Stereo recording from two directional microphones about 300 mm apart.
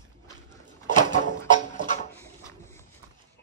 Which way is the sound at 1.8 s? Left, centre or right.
Left.